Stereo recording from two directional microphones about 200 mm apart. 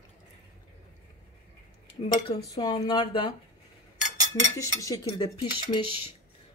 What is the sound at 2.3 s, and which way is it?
A woman's voice, 20° left (ahead or behind).